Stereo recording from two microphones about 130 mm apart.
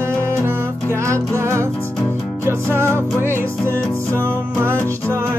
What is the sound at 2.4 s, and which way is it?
Music, 20° right (ahead or behind).